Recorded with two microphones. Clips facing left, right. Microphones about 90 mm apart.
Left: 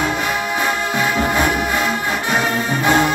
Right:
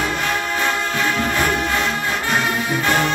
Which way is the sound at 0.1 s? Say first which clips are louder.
Left 2 dB; 10° left (ahead or behind).